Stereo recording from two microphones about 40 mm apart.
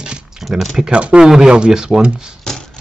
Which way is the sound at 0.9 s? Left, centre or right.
Right.